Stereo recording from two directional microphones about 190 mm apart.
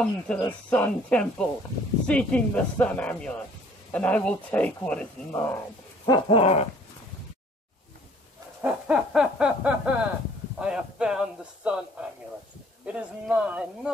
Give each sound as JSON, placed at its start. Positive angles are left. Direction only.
{"t": 0.0, "sound": "speech", "side_deg": 5}
{"t": 6.0, "sound": "dog", "side_deg": 25}
{"t": 8.6, "sound": "owl", "side_deg": -5}
{"t": 10.6, "sound": "speech", "side_deg": -5}
{"t": 12.8, "sound": "owl", "side_deg": -5}